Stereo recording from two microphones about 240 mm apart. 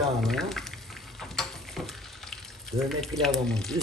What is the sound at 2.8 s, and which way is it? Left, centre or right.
Speech, centre.